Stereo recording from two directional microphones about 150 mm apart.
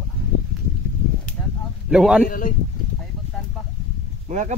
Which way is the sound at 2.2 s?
70° left (ahead or behind).